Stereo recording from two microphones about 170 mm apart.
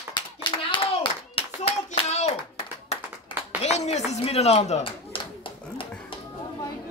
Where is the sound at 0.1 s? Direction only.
25° left (ahead or behind).